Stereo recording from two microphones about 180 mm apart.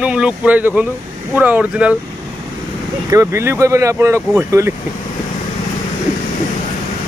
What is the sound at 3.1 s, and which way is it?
Speech, 15° right (ahead or behind).